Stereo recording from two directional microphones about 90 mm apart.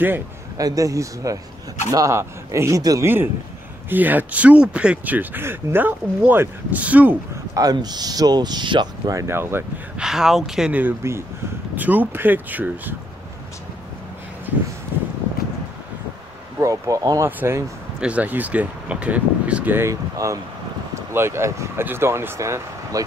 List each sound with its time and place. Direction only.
0.6 s speech: 40° right (ahead or behind)
3.9 s speech: 20° right (ahead or behind)
7.5 s speech: 45° right (ahead or behind)
9.0 s speech: 40° right (ahead or behind)
9.3 s speech: 25° right (ahead or behind)
9.9 s speech: 5° right (ahead or behind)
10.7 s speech: 20° right (ahead or behind)
11.0 s speech: 30° right (ahead or behind)
11.7 s speech: 20° right (ahead or behind)
16.6 s speech: 40° right (ahead or behind)
17.4 s speech: 30° right (ahead or behind)
18.0 s speech: 15° right (ahead or behind)
19.9 s speech: 35° right (ahead or behind)